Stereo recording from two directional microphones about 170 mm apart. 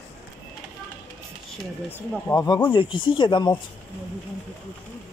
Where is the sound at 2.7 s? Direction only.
30° left (ahead or behind).